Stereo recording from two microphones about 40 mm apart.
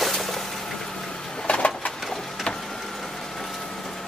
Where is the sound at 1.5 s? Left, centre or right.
Left.